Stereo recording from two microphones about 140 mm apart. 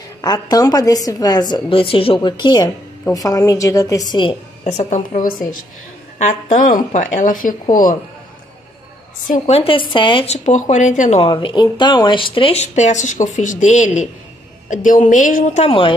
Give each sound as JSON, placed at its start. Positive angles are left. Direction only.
{"t": 0.2, "sound": "a woman's voice", "side_deg": 25}
{"t": 1.7, "sound": "a woman's voice", "side_deg": 40}
{"t": 4.1, "sound": "speech", "side_deg": 35}
{"t": 4.6, "sound": "a woman's voice", "side_deg": 55}
{"t": 6.1, "sound": "a woman's voice", "side_deg": 60}
{"t": 9.5, "sound": "speech", "side_deg": 40}
{"t": 10.2, "sound": "a woman's voice", "side_deg": 55}
{"t": 11.2, "sound": "a woman's voice", "side_deg": 35}